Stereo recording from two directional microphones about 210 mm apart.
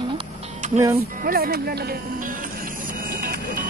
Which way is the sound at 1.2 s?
45° right (ahead or behind).